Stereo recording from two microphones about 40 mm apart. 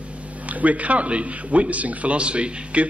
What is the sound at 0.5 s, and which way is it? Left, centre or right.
A man's voice, right.